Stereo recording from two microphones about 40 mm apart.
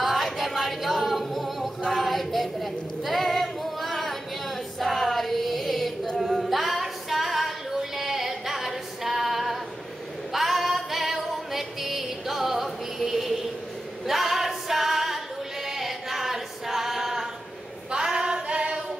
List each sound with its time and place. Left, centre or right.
0.0 s singing: centre
1.9 s a sound: centre
6.4 s female singing: centre
10.3 s music: centre
14.0 s singing: centre
17.9 s singing: right